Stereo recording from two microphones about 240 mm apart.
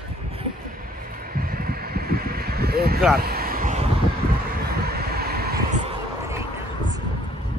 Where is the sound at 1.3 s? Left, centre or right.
Right.